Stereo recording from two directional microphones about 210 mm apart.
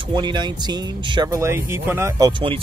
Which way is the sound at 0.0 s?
20° right (ahead or behind).